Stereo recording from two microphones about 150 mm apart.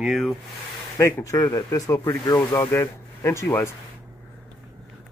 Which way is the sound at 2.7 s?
15° left (ahead or behind).